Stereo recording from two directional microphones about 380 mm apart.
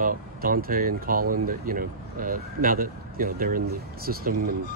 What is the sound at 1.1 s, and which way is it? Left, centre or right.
Speech, right.